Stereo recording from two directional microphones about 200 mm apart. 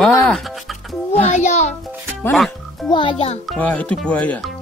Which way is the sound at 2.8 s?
25° left (ahead or behind).